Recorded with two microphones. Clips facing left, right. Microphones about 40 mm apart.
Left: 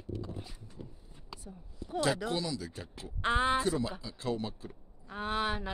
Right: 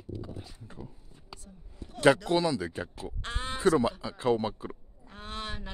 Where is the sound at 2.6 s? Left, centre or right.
Right.